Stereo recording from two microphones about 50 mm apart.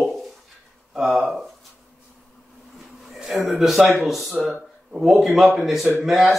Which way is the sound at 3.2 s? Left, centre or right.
Centre.